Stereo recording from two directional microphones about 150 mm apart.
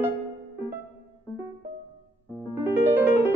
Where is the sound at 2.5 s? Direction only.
15° right (ahead or behind).